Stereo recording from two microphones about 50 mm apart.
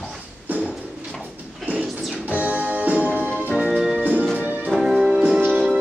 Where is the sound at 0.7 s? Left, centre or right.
Centre.